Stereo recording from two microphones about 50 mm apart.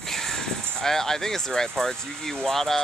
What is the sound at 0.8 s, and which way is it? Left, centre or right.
Speech, centre.